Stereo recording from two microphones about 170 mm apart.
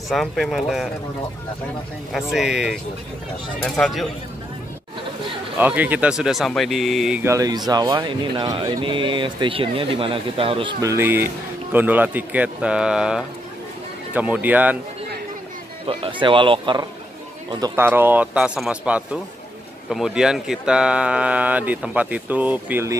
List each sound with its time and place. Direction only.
0.1 s speech: centre (ahead or behind)
2.1 s speech: centre (ahead or behind)
5.6 s speech: 10° right (ahead or behind)
7.2 s speech: 20° right (ahead or behind)
10.8 s speech: 15° right (ahead or behind)
15.9 s speech: 30° right (ahead or behind)
17.7 s speech: 15° right (ahead or behind)